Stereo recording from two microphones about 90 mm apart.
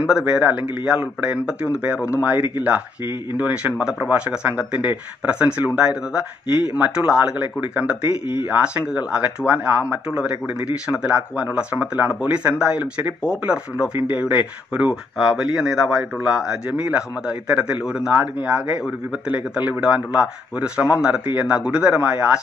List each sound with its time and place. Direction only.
0.0 s a man's voice: 10° right (ahead or behind)
3.7 s speech: 5° right (ahead or behind)
6.7 s speech: 15° right (ahead or behind)
13.9 s speech: 20° right (ahead or behind)